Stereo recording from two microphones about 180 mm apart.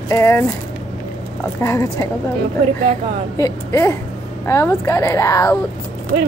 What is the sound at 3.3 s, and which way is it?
Speech, 15° left (ahead or behind).